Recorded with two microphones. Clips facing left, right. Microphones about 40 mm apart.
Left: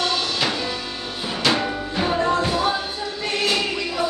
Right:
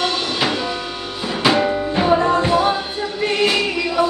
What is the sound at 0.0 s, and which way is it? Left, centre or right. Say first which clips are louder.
Music: right 3 dB; centre.